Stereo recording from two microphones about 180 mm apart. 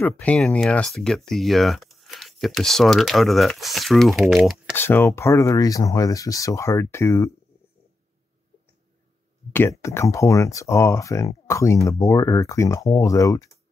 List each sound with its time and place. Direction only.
0.0 s speech: 5° left (ahead or behind)
4.7 s speech: 10° left (ahead or behind)
9.5 s speech: 15° left (ahead or behind)